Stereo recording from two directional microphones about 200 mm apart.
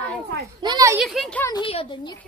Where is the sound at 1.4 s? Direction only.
20° left (ahead or behind).